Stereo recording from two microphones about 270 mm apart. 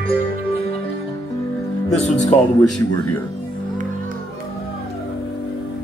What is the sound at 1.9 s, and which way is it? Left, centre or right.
Speech, left.